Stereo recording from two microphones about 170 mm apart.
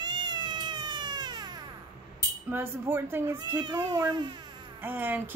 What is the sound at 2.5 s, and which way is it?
Speech, 15° right (ahead or behind).